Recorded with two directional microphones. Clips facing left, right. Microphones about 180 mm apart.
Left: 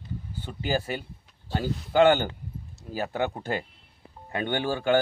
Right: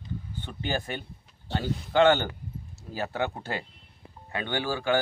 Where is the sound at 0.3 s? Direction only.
10° left (ahead or behind).